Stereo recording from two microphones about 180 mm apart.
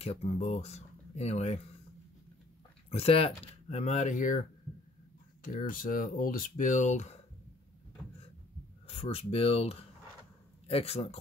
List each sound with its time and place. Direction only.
0.0 s speech: 35° left (ahead or behind)
2.9 s speech: 30° left (ahead or behind)
5.4 s speech: 50° left (ahead or behind)
8.8 s speech: 30° left (ahead or behind)